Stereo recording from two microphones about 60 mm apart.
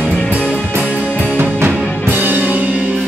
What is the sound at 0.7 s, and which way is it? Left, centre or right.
Music, right.